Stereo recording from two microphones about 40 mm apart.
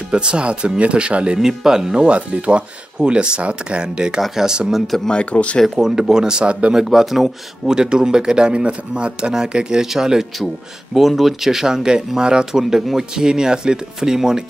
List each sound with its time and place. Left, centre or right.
0.1 s speech: right
1.6 s speech: centre
2.0 s speech: right
5.1 s speech: left
5.8 s speech: centre
6.4 s speech: right
6.7 s speech: centre
7.7 s speech: right